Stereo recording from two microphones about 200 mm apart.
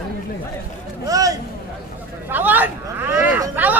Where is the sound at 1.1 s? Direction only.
15° right (ahead or behind).